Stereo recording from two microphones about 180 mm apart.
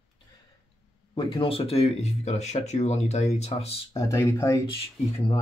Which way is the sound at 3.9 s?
15° left (ahead or behind).